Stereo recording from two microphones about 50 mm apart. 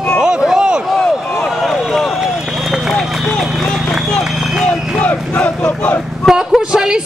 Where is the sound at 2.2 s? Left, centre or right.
Centre.